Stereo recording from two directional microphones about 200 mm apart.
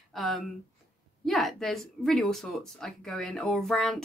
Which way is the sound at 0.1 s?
Centre (ahead or behind).